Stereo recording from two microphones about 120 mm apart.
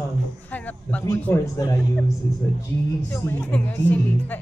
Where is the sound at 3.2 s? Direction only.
15° left (ahead or behind).